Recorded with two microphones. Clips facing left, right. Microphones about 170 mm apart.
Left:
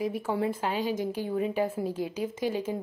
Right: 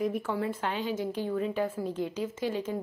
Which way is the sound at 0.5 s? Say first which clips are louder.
Left 2 dB; 10° left (ahead or behind).